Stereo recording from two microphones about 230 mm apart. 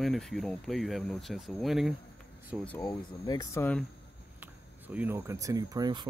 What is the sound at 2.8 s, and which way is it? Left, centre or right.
Speech, centre.